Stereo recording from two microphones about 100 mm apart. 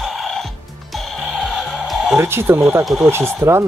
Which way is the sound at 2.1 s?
25° right (ahead or behind).